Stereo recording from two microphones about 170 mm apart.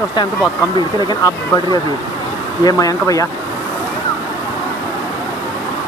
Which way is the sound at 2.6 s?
20° left (ahead or behind).